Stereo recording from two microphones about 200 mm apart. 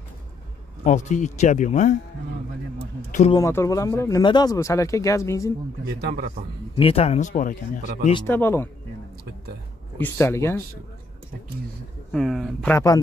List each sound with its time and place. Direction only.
0.8 s speech: 35° left (ahead or behind)
3.1 s speech: 35° left (ahead or behind)
3.3 s speech: 15° left (ahead or behind)
5.9 s a man's voice: 50° right (ahead or behind)
6.7 s speech: 30° left (ahead or behind)
8.3 s speech: 10° left (ahead or behind)
9.9 s speech: 10° left (ahead or behind)
12.1 s speech: centre (ahead or behind)
12.7 s speech: 15° left (ahead or behind)